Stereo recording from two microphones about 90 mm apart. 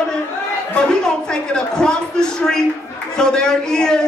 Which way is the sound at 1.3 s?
10° left (ahead or behind).